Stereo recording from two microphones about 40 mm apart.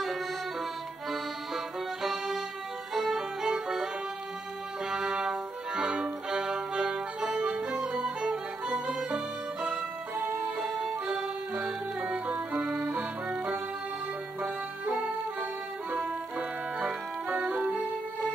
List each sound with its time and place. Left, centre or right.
2.0 s music: centre; by 7.9 s right
7.9 s music: right
9.7 s music: centre
16.8 s music: right